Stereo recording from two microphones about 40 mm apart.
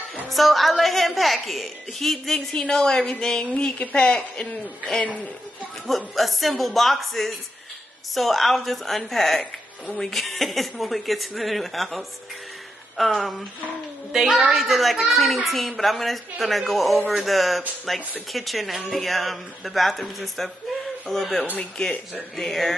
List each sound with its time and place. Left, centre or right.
0.3 s a woman's voice: centre
2.5 s speech: left
5.9 s a woman's voice: centre
14.1 s speech: centre
14.6 s a woman's voice: centre